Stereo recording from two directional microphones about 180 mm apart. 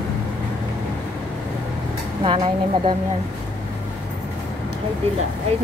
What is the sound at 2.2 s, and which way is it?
Speech, 30° right (ahead or behind).